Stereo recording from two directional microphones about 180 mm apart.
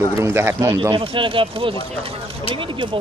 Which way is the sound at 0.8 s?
25° right (ahead or behind).